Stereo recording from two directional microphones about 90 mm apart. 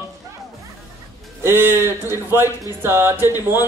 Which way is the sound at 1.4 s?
25° right (ahead or behind).